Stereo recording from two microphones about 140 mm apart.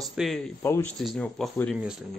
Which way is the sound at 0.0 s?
Centre (ahead or behind).